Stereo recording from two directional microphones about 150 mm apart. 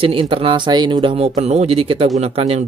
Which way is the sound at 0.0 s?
40° right (ahead or behind).